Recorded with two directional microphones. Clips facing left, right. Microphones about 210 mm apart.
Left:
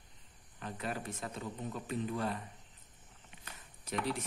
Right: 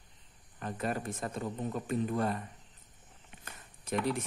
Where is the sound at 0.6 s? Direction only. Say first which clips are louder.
Right 5 dB; 50° right (ahead or behind).